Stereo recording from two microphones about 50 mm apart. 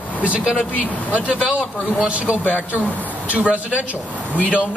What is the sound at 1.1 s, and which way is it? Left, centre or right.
Speech, right.